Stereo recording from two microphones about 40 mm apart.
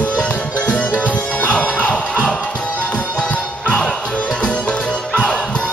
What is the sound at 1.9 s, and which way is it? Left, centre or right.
Music, left.